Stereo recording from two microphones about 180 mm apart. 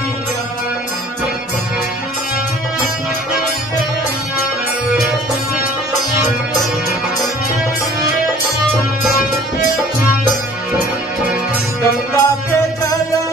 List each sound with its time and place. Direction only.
12.1 s music: 20° left (ahead or behind)